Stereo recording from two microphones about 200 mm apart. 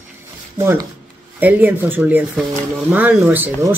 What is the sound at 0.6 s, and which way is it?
Speech, 15° right (ahead or behind).